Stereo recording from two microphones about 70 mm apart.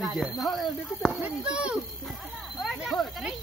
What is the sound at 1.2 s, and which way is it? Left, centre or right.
Speech, centre.